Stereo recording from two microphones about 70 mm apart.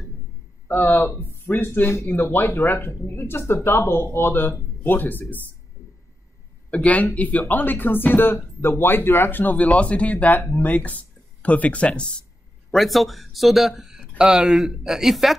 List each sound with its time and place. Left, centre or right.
0.7 s speech: left
6.7 s speech: left
12.7 s speech: centre